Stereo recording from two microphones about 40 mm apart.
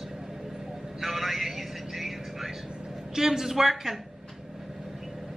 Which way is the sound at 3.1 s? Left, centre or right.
Centre.